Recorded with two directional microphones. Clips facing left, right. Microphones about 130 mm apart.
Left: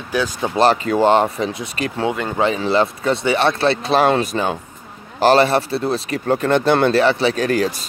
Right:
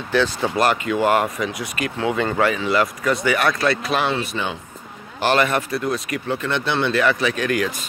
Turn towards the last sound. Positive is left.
turn(degrees=35)  # may be behind; listen again after turning